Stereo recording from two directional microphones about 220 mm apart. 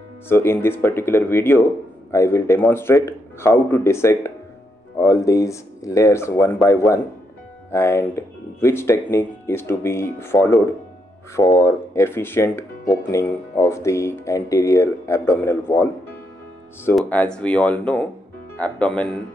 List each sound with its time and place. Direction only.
0.3 s speech: 10° left (ahead or behind)